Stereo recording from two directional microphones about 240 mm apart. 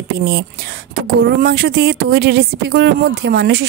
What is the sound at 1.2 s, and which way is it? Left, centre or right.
A woman's voice, right.